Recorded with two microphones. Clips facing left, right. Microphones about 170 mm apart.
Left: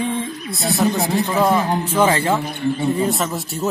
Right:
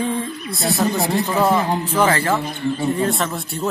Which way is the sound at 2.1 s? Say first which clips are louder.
Left 1 dB; 20° left (ahead or behind).